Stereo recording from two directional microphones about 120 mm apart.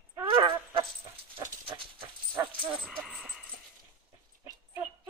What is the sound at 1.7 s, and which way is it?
Horse, 45° right (ahead or behind).